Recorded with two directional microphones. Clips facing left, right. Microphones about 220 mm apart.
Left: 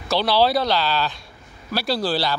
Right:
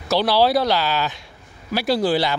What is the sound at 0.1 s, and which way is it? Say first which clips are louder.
Speech: right 2 dB; 15° right (ahead or behind).